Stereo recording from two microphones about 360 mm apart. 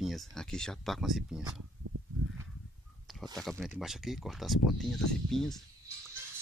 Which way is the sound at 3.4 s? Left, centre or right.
Centre.